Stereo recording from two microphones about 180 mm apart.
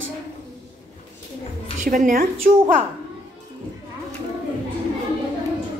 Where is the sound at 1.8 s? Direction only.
45° right (ahead or behind).